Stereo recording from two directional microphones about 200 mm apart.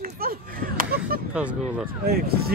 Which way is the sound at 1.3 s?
5° right (ahead or behind).